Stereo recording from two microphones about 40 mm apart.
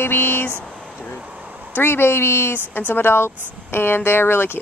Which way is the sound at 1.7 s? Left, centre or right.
Left.